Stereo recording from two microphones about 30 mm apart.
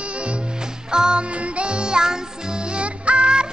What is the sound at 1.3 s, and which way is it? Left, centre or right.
Music, right.